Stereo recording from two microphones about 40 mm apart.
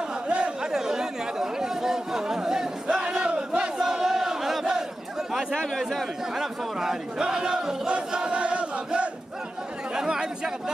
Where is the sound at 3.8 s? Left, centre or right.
Centre.